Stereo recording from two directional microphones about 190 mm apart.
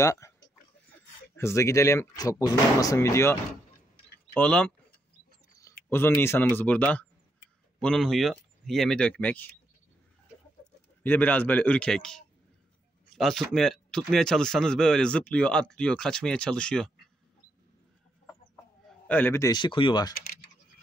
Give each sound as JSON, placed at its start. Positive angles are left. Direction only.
{"t": 0.0, "sound": "speech", "side_deg": 15}
{"t": 1.3, "sound": "speech", "side_deg": 15}
{"t": 11.0, "sound": "speech", "side_deg": 10}
{"t": 18.9, "sound": "speech", "side_deg": 10}